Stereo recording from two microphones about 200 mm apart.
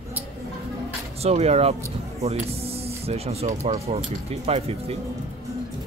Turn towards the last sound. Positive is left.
turn(degrees=-30)  # may be behind; listen again after turning